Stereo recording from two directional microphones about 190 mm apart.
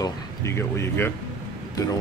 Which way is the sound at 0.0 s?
15° left (ahead or behind).